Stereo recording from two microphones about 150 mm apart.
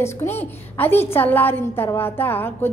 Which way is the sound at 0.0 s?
15° left (ahead or behind).